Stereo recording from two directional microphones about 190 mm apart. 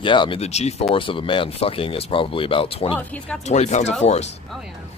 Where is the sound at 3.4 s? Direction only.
35° left (ahead or behind).